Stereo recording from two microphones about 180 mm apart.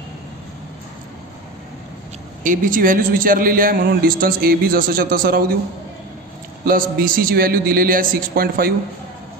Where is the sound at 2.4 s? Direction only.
50° right (ahead or behind).